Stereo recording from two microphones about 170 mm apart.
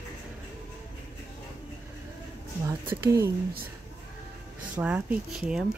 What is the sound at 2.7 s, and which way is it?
Speech, 20° right (ahead or behind).